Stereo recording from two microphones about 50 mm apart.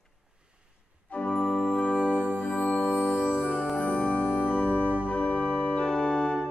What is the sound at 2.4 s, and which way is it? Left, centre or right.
Music, left.